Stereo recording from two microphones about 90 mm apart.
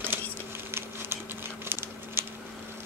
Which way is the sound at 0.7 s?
25° right (ahead or behind).